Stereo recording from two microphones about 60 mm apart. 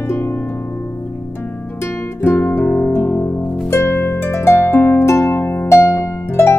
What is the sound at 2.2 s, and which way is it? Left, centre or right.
Music, left.